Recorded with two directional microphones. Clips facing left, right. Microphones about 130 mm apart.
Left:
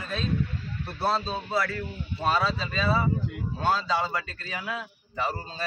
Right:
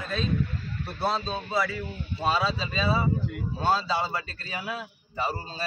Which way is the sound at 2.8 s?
20° right (ahead or behind).